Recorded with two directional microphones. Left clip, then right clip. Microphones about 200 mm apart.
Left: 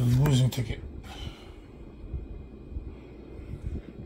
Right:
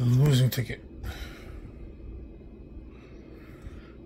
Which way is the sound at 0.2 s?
30° right (ahead or behind).